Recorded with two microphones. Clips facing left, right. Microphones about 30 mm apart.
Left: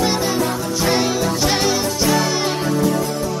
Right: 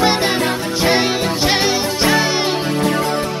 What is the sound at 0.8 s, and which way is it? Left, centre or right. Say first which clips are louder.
Music: right 2 dB; right.